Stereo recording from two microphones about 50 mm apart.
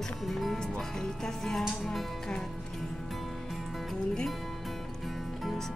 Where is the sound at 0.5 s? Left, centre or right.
Centre.